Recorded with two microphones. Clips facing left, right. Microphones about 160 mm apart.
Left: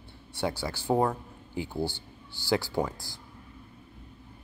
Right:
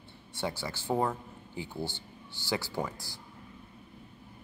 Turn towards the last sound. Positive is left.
turn(degrees=15)  # may be behind; listen again after turning